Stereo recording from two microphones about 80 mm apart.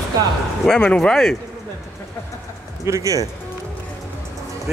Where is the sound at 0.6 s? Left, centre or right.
Centre.